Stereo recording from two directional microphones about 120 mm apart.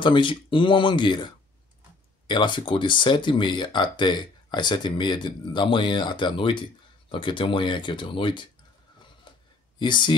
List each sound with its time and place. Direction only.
0.0 s speech: 45° left (ahead or behind)
9.8 s speech: 40° left (ahead or behind)